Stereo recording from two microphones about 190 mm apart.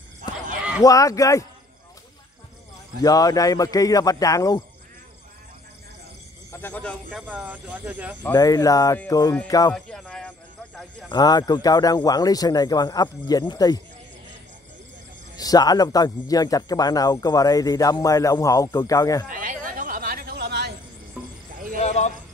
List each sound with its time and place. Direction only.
0.8 s a man's voice: 15° left (ahead or behind)
3.0 s speech: 20° left (ahead or behind)
6.5 s speech: 10° left (ahead or behind)
7.2 s speech: 10° right (ahead or behind)
8.3 s speech: 20° left (ahead or behind)
9.8 s a sound: 5° left (ahead or behind)
11.1 s speech: 20° left (ahead or behind)
15.3 s speech: 20° left (ahead or behind)
19.2 s a sound: 45° right (ahead or behind); by 20.7 s 60° right (ahead or behind)
21.2 s a sound: 5° right (ahead or behind)
21.5 s a sound: 45° right (ahead or behind)
21.8 s clip-clop: 35° left (ahead or behind)